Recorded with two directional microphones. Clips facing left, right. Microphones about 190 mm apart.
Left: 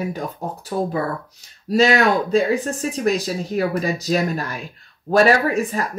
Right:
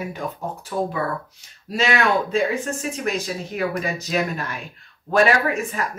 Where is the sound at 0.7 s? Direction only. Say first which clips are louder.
Left 2 dB; 40° left (ahead or behind).